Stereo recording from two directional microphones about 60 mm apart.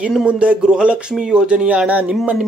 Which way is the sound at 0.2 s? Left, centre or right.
Right.